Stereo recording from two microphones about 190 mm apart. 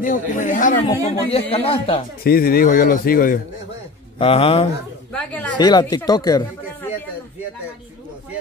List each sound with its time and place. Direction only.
0.0 s speech: 45° left (ahead or behind)
1.0 s speech: 30° left (ahead or behind)
2.2 s speech: 55° left (ahead or behind)
4.2 s speech: 30° left (ahead or behind)
5.1 s speech: 5° left (ahead or behind)
5.6 s speech: 20° left (ahead or behind)